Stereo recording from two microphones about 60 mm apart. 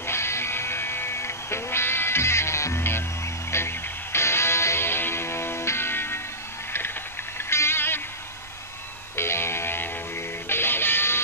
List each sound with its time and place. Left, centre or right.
0.0 s music: left
7.3 s music: left
9.1 s music: left